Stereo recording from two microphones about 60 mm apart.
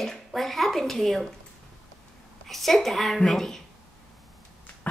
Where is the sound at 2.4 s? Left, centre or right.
Centre.